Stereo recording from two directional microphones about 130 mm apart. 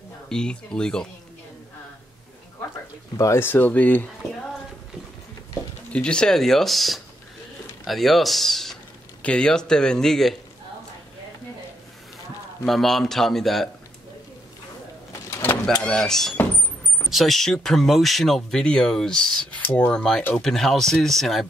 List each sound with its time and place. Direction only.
0.3 s speech: 5° left (ahead or behind)
3.2 s speech: 20° left (ahead or behind)
5.9 s speech: 5° left (ahead or behind)
12.6 s speech: centre (ahead or behind)
15.3 s bird: 20° left (ahead or behind)
15.8 s speech: 5° left (ahead or behind)